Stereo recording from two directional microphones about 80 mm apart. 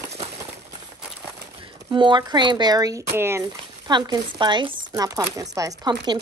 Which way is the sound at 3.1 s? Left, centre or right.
Right.